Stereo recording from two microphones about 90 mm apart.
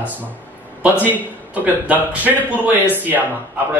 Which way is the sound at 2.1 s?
15° right (ahead or behind).